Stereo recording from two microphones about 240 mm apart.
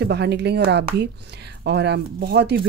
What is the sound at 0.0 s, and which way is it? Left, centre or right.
Speech, right.